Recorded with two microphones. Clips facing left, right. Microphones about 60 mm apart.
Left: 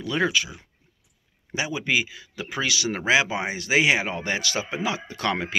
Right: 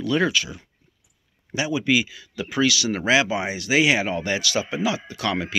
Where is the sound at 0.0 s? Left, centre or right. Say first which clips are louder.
Right 2 dB; left.